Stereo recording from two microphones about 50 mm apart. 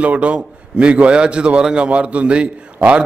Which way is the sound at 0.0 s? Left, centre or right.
Right.